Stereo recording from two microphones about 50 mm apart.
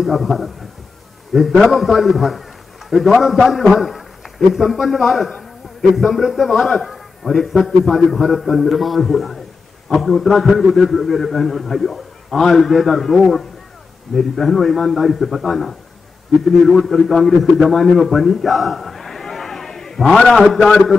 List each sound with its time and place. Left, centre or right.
0.0 s a man's voice: centre
20.2 s a man's voice: centre